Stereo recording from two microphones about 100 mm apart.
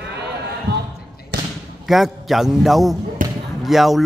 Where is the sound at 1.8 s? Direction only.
Centre (ahead or behind).